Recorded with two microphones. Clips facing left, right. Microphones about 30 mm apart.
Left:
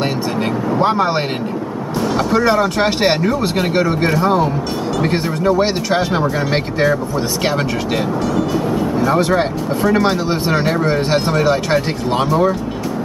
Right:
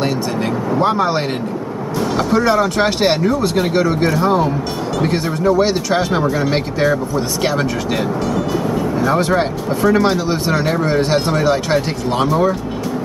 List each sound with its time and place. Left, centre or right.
0.7 s speech: centre
4.2 s speech: centre
5.1 s speech: centre
6.1 s speech: centre
7.4 s speech: centre
8.4 s speech: centre